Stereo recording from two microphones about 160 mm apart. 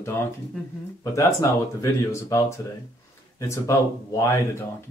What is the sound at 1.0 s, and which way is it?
Speech, 20° left (ahead or behind).